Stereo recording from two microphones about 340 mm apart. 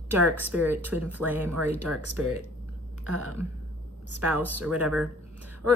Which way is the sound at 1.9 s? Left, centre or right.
Right.